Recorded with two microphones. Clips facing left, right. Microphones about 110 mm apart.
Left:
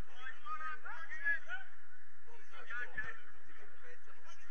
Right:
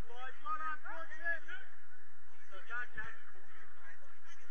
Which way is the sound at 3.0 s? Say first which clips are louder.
Left 1 dB; 65° left (ahead or behind).